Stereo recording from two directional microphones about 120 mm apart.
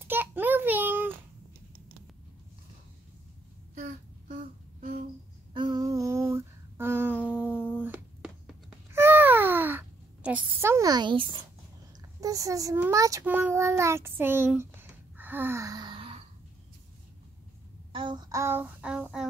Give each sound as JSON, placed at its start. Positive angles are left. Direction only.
{"t": 0.0, "sound": "a sound", "side_deg": -15}
{"t": 3.7, "sound": "a sound", "side_deg": -85}
{"t": 5.5, "sound": "a sound", "side_deg": -40}
{"t": 10.9, "sound": "speech", "side_deg": -40}
{"t": 12.2, "sound": "a child's voice", "side_deg": -30}
{"t": 12.9, "sound": "child singing", "side_deg": -25}
{"t": 13.2, "sound": "a child's voice", "side_deg": -15}
{"t": 17.9, "sound": "child singing", "side_deg": -40}
{"t": 18.3, "sound": "child singing", "side_deg": -20}